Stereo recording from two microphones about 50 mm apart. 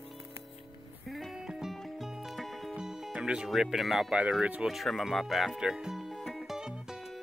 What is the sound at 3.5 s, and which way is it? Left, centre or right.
Speech, centre.